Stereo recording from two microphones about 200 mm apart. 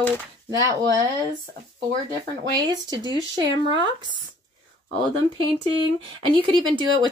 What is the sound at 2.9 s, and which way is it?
Speech, 20° right (ahead or behind).